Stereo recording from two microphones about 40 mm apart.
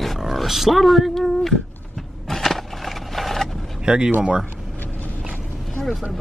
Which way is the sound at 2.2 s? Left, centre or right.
Centre.